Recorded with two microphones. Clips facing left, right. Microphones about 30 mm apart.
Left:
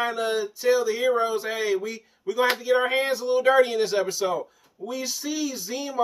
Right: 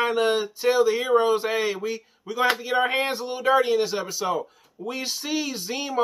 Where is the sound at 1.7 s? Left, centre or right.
Centre.